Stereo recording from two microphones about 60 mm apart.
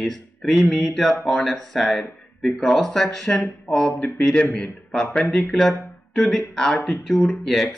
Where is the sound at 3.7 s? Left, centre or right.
Left.